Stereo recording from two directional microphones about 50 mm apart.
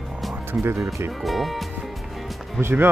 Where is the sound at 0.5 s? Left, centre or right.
Right.